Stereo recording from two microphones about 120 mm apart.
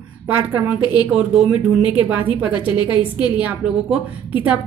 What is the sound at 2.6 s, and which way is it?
Speech, 40° left (ahead or behind).